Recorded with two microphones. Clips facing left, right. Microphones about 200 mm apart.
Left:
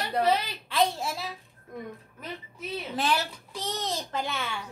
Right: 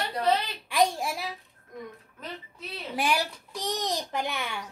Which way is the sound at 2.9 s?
15° right (ahead or behind).